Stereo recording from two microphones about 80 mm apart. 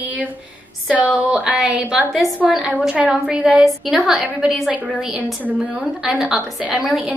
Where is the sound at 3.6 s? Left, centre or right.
Centre.